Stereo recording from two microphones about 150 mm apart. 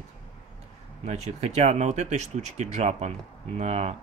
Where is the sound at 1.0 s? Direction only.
50° right (ahead or behind).